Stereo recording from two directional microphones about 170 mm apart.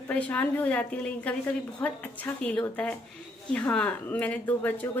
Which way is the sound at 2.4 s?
5° left (ahead or behind).